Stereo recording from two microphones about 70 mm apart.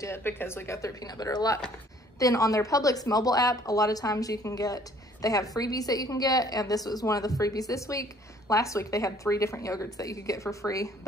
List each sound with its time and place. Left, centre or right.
0.0 s speech: left
1.0 s speech: left